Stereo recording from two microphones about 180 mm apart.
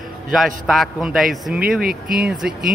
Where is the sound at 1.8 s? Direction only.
55° right (ahead or behind).